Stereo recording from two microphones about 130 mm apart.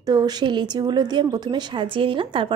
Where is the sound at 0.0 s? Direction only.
30° right (ahead or behind).